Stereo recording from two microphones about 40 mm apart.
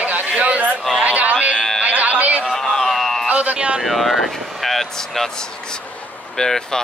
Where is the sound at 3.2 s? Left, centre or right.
Right.